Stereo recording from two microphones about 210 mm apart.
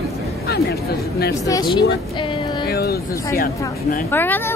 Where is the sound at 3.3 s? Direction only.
45° left (ahead or behind).